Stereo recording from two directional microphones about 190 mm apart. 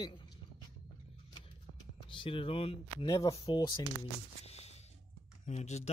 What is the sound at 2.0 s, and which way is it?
Speech, 25° left (ahead or behind).